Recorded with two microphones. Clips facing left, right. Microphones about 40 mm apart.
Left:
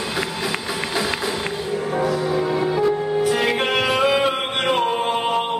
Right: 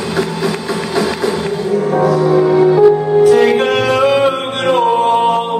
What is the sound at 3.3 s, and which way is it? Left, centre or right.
Music, centre.